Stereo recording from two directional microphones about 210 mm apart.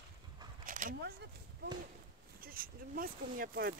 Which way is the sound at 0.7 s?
40° right (ahead or behind).